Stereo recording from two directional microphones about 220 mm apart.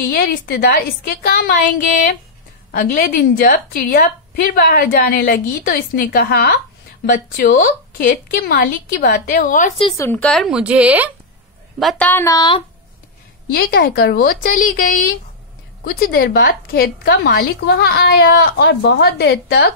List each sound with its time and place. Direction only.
0.1 s a woman's voice: 45° left (ahead or behind)
9.8 s speech: 10° left (ahead or behind)
13.5 s a woman's voice: 40° left (ahead or behind)